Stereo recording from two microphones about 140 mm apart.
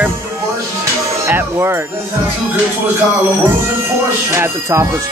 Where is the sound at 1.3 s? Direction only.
20° right (ahead or behind).